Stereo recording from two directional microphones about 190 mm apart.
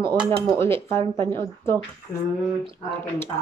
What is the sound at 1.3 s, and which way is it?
Speech, 15° left (ahead or behind).